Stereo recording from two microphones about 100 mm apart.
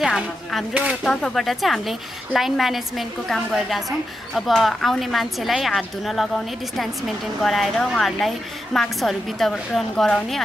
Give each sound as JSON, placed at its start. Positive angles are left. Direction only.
{"t": 0.0, "sound": "a woman's voice", "side_deg": 0}